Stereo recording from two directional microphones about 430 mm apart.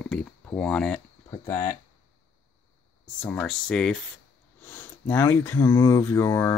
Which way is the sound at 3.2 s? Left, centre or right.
Centre.